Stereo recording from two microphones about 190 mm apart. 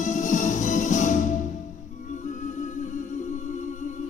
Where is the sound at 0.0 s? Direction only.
40° left (ahead or behind).